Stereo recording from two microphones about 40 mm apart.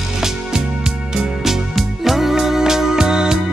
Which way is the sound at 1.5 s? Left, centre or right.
Centre.